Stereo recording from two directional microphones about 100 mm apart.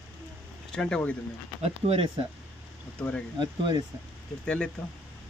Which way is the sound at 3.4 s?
45° right (ahead or behind).